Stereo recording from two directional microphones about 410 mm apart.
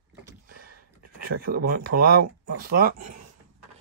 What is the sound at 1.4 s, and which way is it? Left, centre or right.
Speech, right.